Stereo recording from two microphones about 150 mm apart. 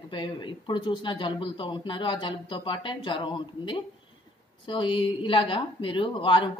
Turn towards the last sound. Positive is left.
turn(degrees=35)  # may be behind; listen again after turning